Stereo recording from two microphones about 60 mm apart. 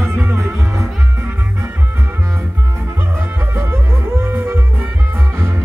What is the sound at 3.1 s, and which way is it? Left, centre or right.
Music, right.